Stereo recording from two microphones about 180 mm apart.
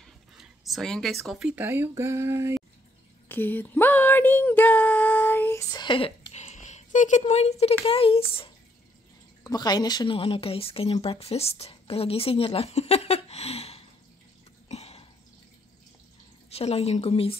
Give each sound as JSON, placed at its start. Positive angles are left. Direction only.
{"t": 0.0, "sound": "a sound", "side_deg": 0}
{"t": 1.2, "sound": "speech", "side_deg": -5}
{"t": 3.3, "sound": "a sound", "side_deg": 10}
{"t": 7.8, "sound": "a woman's voice", "side_deg": 30}
{"t": 9.4, "sound": "a woman's voice", "side_deg": 20}
{"t": 14.7, "sound": "throat clearing", "side_deg": 35}
{"t": 16.4, "sound": "a woman's voice", "side_deg": 35}